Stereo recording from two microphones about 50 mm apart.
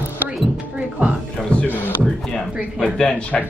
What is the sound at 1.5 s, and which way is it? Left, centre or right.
Speech, left.